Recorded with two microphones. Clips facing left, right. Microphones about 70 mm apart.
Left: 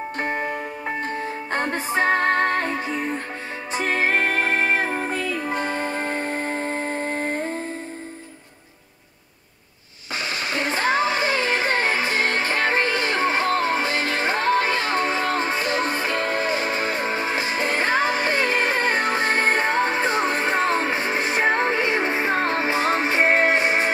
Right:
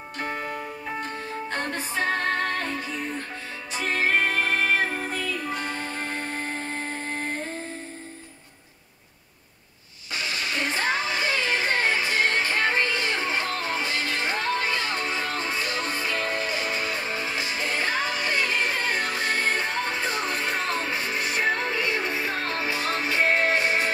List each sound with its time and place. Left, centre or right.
0.2 s music: left
10.1 s music: left